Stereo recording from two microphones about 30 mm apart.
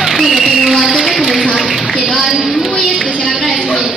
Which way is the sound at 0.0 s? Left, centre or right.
Centre.